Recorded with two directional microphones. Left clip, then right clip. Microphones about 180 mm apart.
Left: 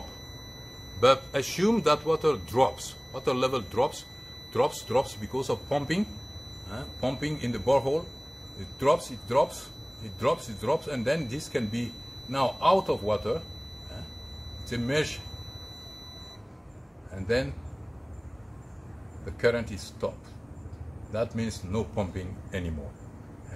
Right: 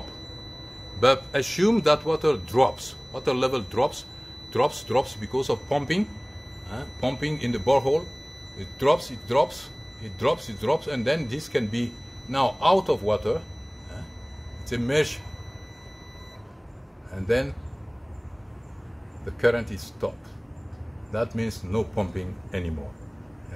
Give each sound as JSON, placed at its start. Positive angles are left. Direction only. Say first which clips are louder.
{"t": 0.9, "sound": "a man's voice", "louder": "right 2 dB", "side_deg": -15}
{"t": 14.7, "sound": "a man's voice", "louder": "right 4 dB", "side_deg": -20}
{"t": 19.4, "sound": "a man's voice", "louder": "right 3 dB", "side_deg": -20}
{"t": 21.1, "sound": "a man's voice", "louder": "right 3 dB", "side_deg": -20}